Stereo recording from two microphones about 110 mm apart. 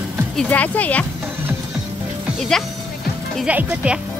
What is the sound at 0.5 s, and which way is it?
Speech, 15° left (ahead or behind).